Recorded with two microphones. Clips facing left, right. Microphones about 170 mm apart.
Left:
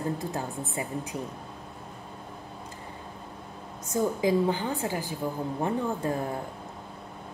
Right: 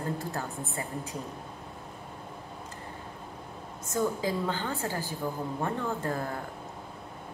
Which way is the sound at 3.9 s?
15° left (ahead or behind).